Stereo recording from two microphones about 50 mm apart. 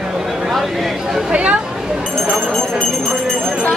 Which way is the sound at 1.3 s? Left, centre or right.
Right.